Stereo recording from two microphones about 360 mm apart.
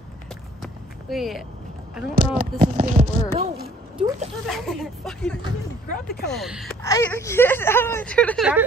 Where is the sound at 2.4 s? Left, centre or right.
Centre.